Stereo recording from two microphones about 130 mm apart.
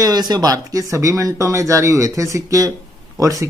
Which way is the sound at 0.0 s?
30° right (ahead or behind).